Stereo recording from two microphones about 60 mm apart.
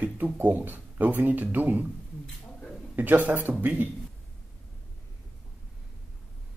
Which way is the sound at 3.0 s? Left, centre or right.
Right.